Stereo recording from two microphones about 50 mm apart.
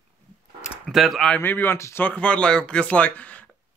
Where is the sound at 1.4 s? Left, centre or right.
Left.